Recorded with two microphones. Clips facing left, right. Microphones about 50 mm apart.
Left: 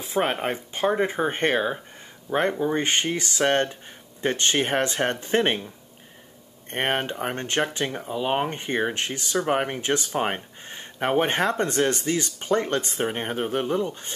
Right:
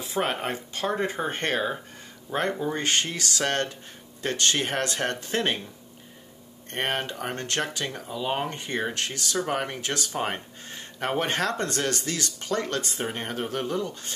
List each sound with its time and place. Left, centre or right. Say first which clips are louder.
0.2 s speech: left 3 dB; centre
6.7 s speech: left 3 dB; left